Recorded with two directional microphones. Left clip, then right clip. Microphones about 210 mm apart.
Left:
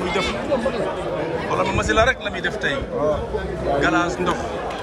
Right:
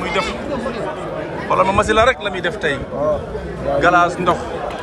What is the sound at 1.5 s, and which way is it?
A man's voice, 5° left (ahead or behind).